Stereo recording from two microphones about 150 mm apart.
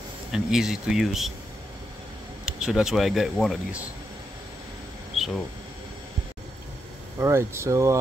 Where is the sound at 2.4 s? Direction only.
5° right (ahead or behind).